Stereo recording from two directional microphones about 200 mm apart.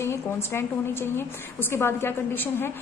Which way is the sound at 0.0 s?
10° left (ahead or behind).